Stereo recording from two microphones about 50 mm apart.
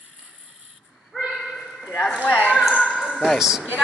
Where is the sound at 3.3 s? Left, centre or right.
Centre.